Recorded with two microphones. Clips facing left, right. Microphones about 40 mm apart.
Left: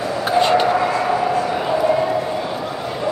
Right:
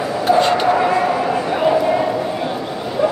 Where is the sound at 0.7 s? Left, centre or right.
Centre.